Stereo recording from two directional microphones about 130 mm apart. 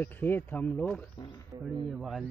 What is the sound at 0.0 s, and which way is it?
Speech, 15° left (ahead or behind).